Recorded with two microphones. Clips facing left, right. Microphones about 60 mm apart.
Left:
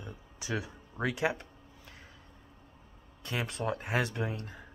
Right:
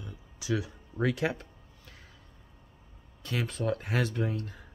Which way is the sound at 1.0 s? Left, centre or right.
Centre.